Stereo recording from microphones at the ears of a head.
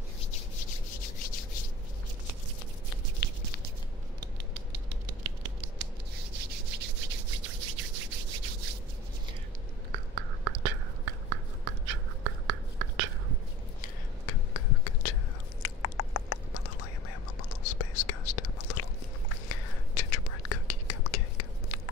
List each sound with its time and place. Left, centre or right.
0.2 s rub: left
4.2 s scissors: right
9.9 s whispering: right
13.7 s a sound: left
15.6 s whispering: left